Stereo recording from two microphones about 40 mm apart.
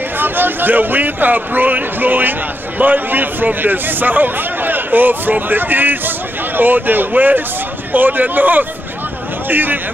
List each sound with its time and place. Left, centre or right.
0.2 s speech: right